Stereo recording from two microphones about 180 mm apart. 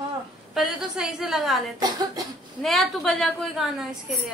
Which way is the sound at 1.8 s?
20° right (ahead or behind).